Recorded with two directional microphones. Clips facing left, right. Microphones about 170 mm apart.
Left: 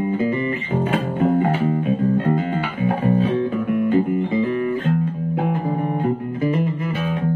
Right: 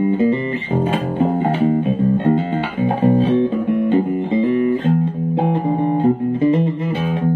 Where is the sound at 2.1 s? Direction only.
25° right (ahead or behind).